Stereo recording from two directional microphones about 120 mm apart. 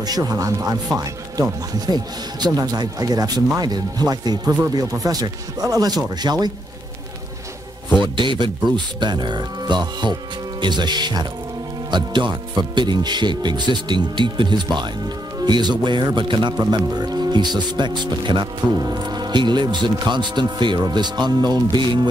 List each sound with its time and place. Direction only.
0.0 s speech: 30° right (ahead or behind)
8.0 s speech: 40° right (ahead or behind)